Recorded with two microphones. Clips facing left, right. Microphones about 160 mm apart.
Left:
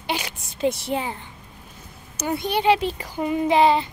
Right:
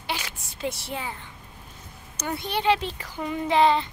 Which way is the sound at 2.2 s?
10° left (ahead or behind).